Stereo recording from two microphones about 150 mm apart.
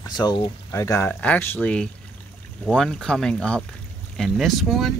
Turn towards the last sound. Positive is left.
turn(degrees=0)  # may be behind; listen again after turning